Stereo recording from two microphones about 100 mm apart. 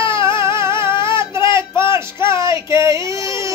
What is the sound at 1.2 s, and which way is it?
Child singing, 30° right (ahead or behind).